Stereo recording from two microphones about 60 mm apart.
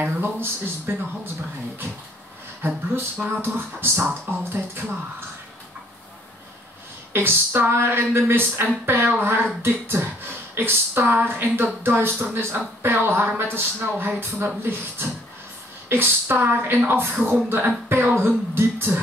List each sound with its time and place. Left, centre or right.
0.0 s speech: right
2.6 s speech: right
7.1 s speech: right